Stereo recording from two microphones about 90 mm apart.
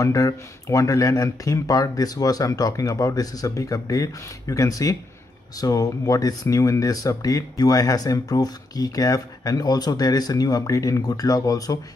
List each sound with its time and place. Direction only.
0.0 s speech: 40° left (ahead or behind)